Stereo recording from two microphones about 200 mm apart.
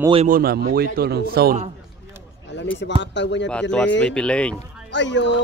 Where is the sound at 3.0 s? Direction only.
60° left (ahead or behind).